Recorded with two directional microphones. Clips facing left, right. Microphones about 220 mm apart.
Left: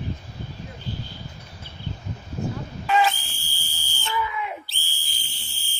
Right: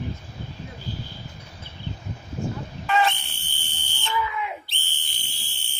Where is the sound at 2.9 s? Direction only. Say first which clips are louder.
Left 1 dB; centre (ahead or behind).